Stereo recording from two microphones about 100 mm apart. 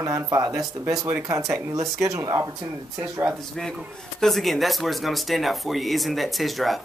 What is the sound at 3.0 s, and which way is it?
Speech, 10° right (ahead or behind).